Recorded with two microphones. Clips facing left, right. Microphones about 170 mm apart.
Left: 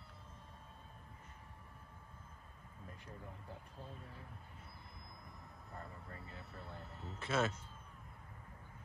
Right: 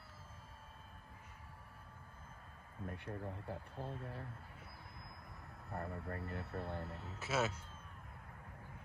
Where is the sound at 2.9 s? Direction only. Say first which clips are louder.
Right 8 dB; 65° right (ahead or behind).